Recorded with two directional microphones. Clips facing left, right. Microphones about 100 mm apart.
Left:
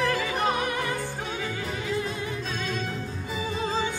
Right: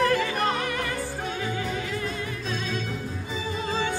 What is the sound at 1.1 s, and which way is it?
Music, centre (ahead or behind).